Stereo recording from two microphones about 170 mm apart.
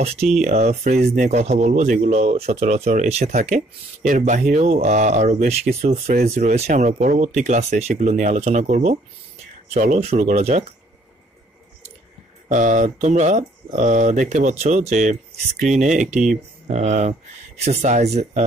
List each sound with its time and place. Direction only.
0.0 s speech: 40° right (ahead or behind)
12.4 s speech: 50° right (ahead or behind)